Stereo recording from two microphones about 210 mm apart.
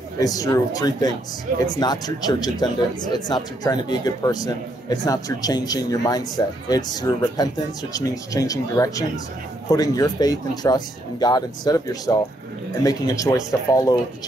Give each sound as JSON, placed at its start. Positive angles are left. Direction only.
{"t": 0.2, "sound": "speech", "side_deg": 15}